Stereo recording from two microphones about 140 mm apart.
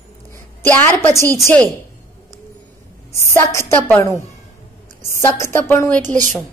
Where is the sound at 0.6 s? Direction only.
15° left (ahead or behind).